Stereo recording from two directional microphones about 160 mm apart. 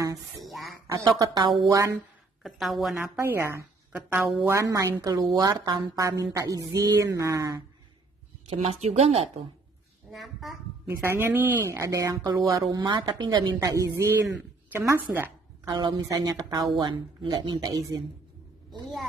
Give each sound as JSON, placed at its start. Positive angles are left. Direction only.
{"t": 0.4, "sound": "a sound", "side_deg": 0}
{"t": 1.0, "sound": "speech", "side_deg": -25}
{"t": 2.0, "sound": "a woman's voice", "side_deg": 0}
{"t": 3.0, "sound": "a woman's voice", "side_deg": -15}
{"t": 4.7, "sound": "speech", "side_deg": -20}
{"t": 8.5, "sound": "speech", "side_deg": -40}
{"t": 10.1, "sound": "speech", "side_deg": 0}
{"t": 10.9, "sound": "a woman's voice", "side_deg": -15}
{"t": 15.7, "sound": "speech", "side_deg": -25}